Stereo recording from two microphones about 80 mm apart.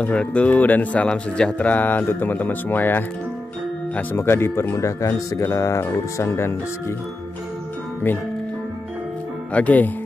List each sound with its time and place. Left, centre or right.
0.0 s speech: centre; by 6.5 s left
9.5 s speech: centre